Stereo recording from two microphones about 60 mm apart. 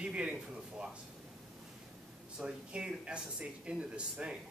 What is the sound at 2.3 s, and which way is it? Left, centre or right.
Speech, centre.